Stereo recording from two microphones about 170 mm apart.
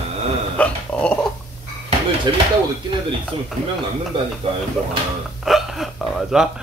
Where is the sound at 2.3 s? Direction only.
25° right (ahead or behind).